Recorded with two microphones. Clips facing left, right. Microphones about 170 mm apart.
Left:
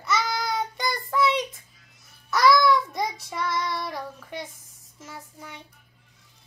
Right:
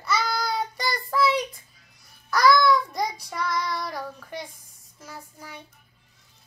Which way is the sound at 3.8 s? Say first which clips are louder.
Even; centre (ahead or behind).